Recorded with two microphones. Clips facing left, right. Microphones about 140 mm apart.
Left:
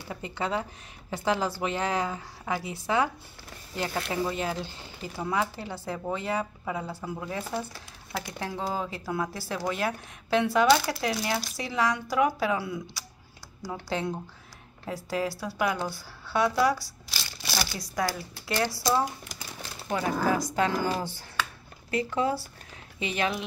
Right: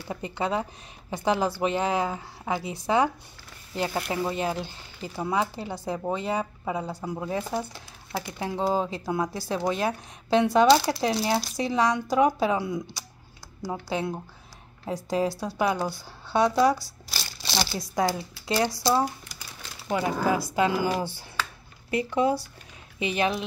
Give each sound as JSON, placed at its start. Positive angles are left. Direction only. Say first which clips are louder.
{"t": 0.1, "sound": "speech", "louder": "right 3 dB", "side_deg": -20}
{"t": 13.8, "sound": "speech", "louder": "even", "side_deg": -15}